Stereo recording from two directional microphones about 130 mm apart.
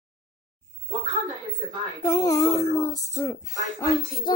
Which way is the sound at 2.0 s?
25° left (ahead or behind).